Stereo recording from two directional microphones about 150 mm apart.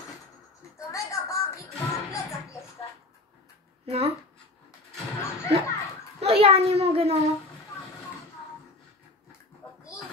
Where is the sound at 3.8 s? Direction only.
45° right (ahead or behind).